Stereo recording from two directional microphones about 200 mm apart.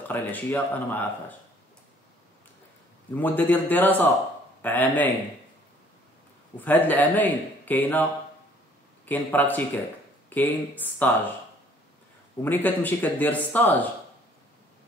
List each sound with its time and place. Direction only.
0.1 s speech: 10° left (ahead or behind)
3.2 s speech: 10° left (ahead or behind)
6.6 s speech: 10° left (ahead or behind)
12.4 s speech: 10° left (ahead or behind)